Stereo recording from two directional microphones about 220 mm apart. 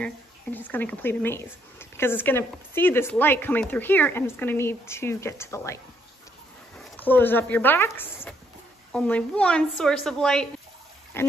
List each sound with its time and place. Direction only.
0.0 s speech: 10° left (ahead or behind)
6.8 s a woman's voice: 10° left (ahead or behind)